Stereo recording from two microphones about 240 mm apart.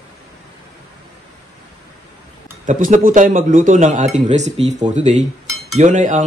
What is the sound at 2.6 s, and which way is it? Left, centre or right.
Speech, right.